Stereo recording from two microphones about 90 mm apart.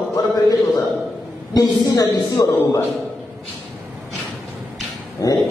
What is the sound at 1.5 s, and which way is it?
A man's voice, 40° left (ahead or behind).